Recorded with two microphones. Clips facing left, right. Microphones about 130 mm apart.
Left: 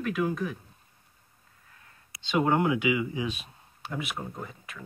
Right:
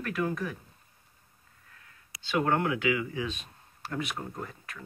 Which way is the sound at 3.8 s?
5° left (ahead or behind).